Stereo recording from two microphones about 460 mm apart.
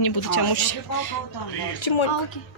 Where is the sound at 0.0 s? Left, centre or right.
Left.